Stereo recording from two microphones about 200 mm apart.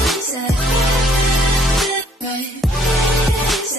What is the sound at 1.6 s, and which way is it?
Music, centre (ahead or behind).